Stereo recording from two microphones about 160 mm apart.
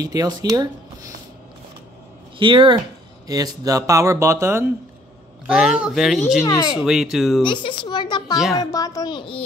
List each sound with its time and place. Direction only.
0.0 s speech: 25° right (ahead or behind)
2.3 s speech: 30° right (ahead or behind)
5.5 s speech: 5° right (ahead or behind)
6.4 s speech: 20° left (ahead or behind)
6.8 s speech: 5° right (ahead or behind)
7.4 s speech: 30° left (ahead or behind)